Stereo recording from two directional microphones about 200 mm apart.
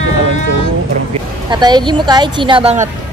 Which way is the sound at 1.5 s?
20° right (ahead or behind).